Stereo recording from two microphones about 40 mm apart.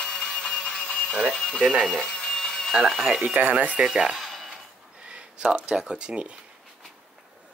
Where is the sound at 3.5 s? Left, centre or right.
Right.